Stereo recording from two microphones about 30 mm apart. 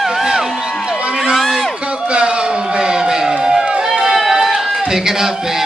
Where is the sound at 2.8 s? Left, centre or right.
Right.